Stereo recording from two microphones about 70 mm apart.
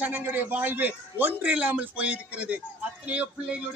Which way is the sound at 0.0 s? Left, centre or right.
Right.